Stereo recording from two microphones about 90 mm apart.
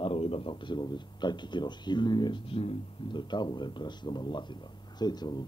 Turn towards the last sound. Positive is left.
turn(degrees=50)  # may be behind; listen again after turning